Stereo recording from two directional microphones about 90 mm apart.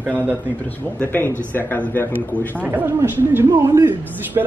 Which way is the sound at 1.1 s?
25° left (ahead or behind).